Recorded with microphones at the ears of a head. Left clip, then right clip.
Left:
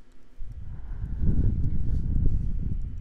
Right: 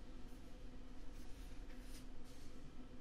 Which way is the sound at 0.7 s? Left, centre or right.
Left.